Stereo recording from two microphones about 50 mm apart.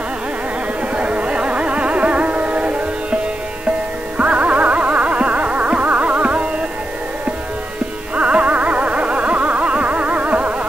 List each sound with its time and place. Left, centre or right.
0.9 s music: right
4.2 s music: right
8.2 s music: right